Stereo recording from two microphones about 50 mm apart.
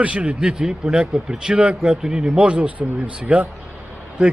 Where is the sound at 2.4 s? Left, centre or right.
Right.